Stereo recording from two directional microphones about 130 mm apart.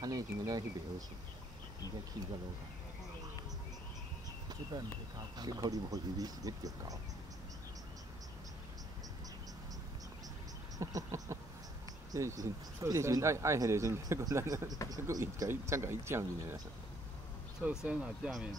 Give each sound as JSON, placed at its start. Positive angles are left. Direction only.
{"t": 0.0, "sound": "speech", "side_deg": -25}
{"t": 5.4, "sound": "speech", "side_deg": -30}
{"t": 10.8, "sound": "a sound", "side_deg": -25}
{"t": 12.1, "sound": "speech", "side_deg": -25}
{"t": 17.6, "sound": "speech", "side_deg": -10}